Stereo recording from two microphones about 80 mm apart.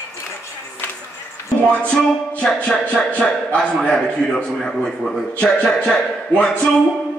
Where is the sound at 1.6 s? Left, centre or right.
Centre.